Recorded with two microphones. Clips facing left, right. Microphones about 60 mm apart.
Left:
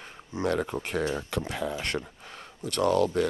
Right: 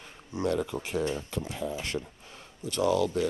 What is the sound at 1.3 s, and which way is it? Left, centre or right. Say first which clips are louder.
Speech: left 3 dB; left.